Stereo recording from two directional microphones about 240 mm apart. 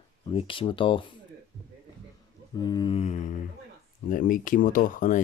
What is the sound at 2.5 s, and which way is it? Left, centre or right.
Speech, centre.